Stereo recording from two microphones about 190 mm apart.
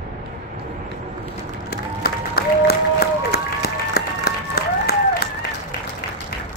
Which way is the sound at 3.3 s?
55° left (ahead or behind).